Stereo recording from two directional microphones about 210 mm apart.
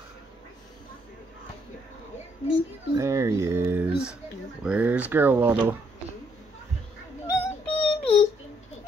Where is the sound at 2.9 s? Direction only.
15° right (ahead or behind).